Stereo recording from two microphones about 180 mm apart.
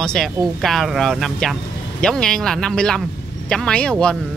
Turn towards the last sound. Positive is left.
turn(degrees=5)  # may be behind; listen again after turning